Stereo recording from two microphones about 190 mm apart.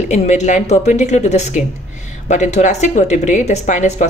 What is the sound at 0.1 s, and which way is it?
Speech, 40° left (ahead or behind).